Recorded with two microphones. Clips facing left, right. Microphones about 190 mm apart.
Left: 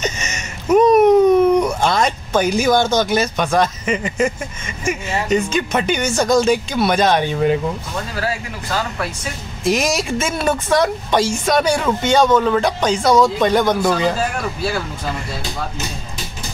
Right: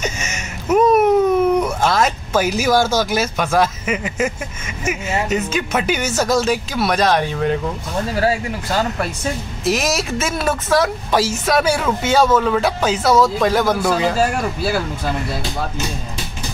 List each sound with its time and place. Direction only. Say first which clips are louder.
0.0 s a sound: left 1 dB; 5° right (ahead or behind)
4.8 s speech: even; 5° right (ahead or behind)
9.7 s speech: left 1 dB; centre (ahead or behind)